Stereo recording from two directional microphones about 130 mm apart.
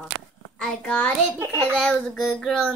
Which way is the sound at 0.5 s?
5° left (ahead or behind).